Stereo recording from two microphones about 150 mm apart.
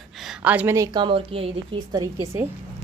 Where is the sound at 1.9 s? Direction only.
25° right (ahead or behind).